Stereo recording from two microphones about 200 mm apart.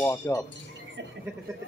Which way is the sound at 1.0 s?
60° right (ahead or behind).